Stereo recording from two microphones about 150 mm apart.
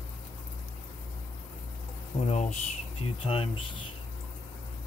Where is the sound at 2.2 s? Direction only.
50° left (ahead or behind).